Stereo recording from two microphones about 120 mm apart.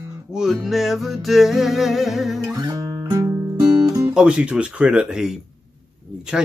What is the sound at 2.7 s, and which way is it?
Music, 30° right (ahead or behind).